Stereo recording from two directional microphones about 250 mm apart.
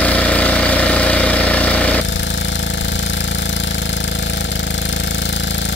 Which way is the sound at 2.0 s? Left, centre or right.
Left.